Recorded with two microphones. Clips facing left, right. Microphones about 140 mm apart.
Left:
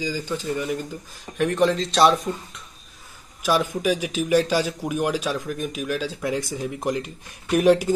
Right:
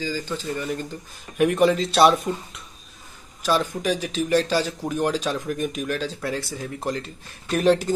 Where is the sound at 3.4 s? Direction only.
10° left (ahead or behind).